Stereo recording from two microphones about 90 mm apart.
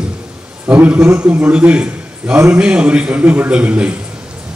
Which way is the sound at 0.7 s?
20° right (ahead or behind).